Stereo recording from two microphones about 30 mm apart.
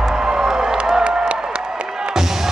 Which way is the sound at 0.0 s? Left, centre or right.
Right.